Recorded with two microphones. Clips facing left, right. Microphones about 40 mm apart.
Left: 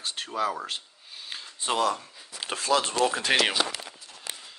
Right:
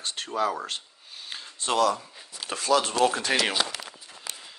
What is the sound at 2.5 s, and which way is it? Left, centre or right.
Speech, right.